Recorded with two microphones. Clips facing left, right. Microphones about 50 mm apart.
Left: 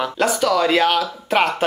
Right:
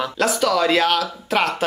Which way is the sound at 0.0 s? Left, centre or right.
Centre.